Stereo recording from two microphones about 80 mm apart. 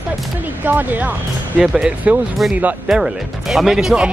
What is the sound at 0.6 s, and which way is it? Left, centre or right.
Speech, right.